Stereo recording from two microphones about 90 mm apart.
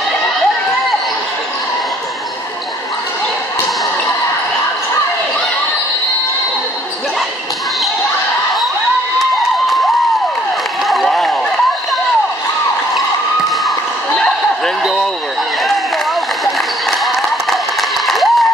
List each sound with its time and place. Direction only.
10.9 s a sound: centre (ahead or behind)
13.7 s basketball bounce: 5° left (ahead or behind)
17.0 s applause: centre (ahead or behind)